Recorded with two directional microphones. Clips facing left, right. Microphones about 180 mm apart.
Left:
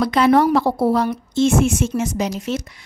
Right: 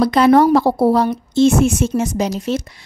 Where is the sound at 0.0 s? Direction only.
40° right (ahead or behind).